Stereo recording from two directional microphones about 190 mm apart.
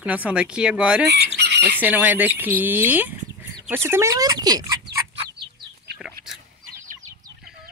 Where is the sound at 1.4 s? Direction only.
60° right (ahead or behind).